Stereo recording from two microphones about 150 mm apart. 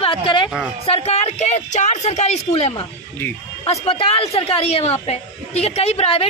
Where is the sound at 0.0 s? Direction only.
35° left (ahead or behind).